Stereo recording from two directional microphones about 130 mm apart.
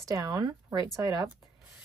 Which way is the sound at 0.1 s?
30° right (ahead or behind).